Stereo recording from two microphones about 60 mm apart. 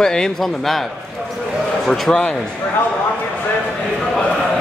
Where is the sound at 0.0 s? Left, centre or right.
Centre.